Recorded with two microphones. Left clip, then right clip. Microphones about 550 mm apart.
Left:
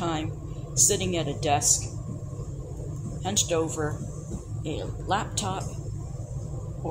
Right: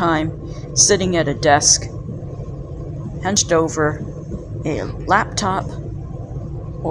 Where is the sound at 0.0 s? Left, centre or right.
Centre.